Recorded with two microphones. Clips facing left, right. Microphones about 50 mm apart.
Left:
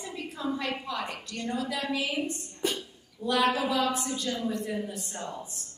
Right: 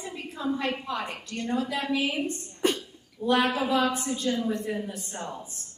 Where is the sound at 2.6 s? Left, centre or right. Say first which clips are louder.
Right 5 dB; right.